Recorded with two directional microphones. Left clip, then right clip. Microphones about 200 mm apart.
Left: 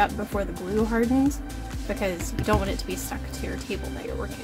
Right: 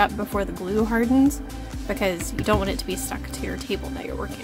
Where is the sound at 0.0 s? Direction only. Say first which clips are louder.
Right 2 dB; 20° right (ahead or behind).